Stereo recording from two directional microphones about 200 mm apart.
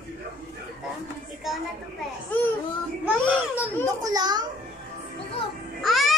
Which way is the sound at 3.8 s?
20° right (ahead or behind).